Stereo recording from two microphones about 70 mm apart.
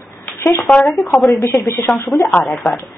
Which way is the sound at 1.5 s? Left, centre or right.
Left.